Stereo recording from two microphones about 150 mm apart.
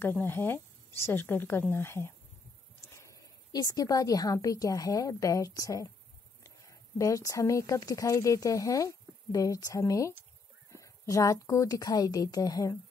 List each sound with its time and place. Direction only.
0.0 s a woman's voice: 15° left (ahead or behind)